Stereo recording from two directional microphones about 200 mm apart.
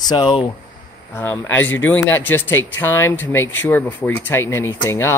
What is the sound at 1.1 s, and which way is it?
Speech, 10° left (ahead or behind).